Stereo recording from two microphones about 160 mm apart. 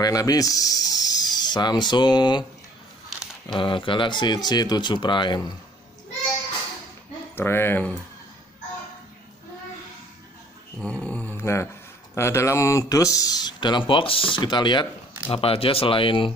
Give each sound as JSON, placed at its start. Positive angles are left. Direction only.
{"t": 0.0, "sound": "speech", "side_deg": 25}
{"t": 3.5, "sound": "speech", "side_deg": 30}
{"t": 7.3, "sound": "speech", "side_deg": 15}
{"t": 10.8, "sound": "dog", "side_deg": 5}
{"t": 12.2, "sound": "speech", "side_deg": 15}